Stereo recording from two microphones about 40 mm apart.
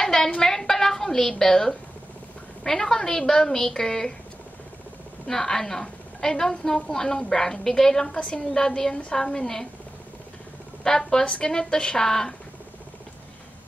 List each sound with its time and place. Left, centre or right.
0.0 s a sound: centre
0.4 s a woman's voice: centre
5.2 s a woman's voice: centre
10.8 s a woman's voice: centre